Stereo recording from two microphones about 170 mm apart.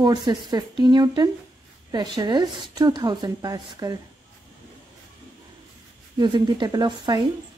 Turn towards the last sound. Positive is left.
turn(degrees=-25)  # may be behind; listen again after turning